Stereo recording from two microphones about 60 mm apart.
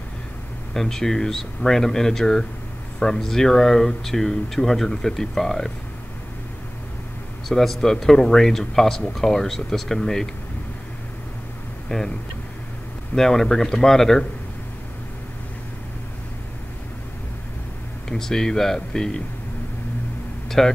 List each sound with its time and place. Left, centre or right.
0.7 s speech: centre
7.4 s speech: centre
11.9 s speech: centre
13.1 s speech: centre
18.0 s speech: centre
20.4 s a sound: centre